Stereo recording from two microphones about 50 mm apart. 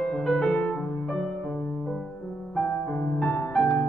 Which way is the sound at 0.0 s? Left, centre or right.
Centre.